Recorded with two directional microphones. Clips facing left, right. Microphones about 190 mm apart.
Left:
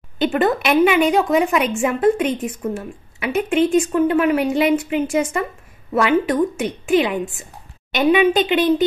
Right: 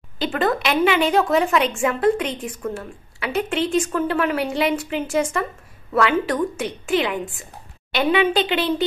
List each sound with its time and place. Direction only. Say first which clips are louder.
0.2 s a woman's voice: left 4 dB; 20° left (ahead or behind)